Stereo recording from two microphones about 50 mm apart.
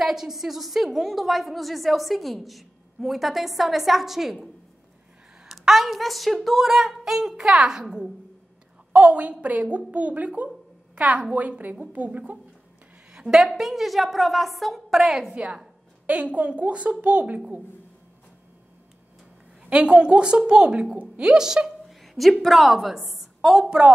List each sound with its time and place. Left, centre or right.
0.0 s a woman's voice: centre
5.5 s a woman's voice: centre
8.9 s a woman's voice: right
13.1 s a sound: centre
13.5 s a woman's voice: centre
15.3 s a woman's voice: centre
19.7 s a woman's voice: right
21.8 s a woman's voice: centre